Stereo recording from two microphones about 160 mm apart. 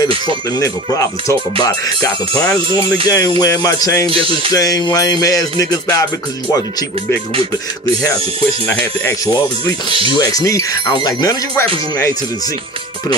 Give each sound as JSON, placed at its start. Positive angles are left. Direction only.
{"t": 0.6, "sound": "music", "side_deg": 20}
{"t": 2.3, "sound": "speech", "side_deg": 5}
{"t": 3.1, "sound": "music", "side_deg": 20}
{"t": 4.1, "sound": "music", "side_deg": -35}
{"t": 4.5, "sound": "music", "side_deg": 25}
{"t": 8.6, "sound": "speech", "side_deg": 15}
{"t": 9.8, "sound": "music", "side_deg": -35}
{"t": 10.1, "sound": "music", "side_deg": 20}